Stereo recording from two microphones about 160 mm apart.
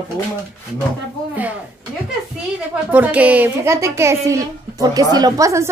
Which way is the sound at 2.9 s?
10° right (ahead or behind).